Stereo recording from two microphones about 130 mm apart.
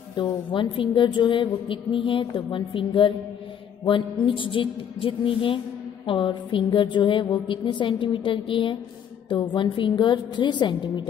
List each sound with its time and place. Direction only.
0.1 s a woman's voice: 35° left (ahead or behind)